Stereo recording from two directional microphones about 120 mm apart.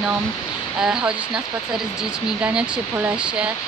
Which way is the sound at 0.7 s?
5° right (ahead or behind).